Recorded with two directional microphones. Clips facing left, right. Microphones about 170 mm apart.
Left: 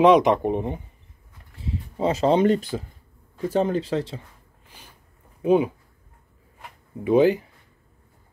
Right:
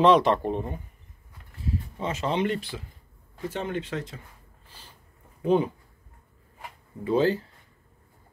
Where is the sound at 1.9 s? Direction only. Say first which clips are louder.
Left 9 dB; 35° left (ahead or behind).